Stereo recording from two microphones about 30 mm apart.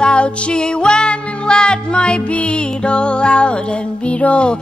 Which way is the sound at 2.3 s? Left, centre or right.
Left.